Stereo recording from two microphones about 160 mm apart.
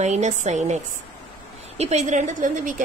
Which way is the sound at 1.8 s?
45° right (ahead or behind).